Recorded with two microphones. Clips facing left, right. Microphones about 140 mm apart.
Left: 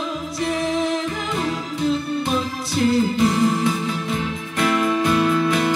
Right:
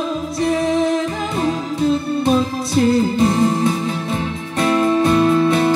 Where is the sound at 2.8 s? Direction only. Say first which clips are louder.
Right 3 dB; 35° right (ahead or behind).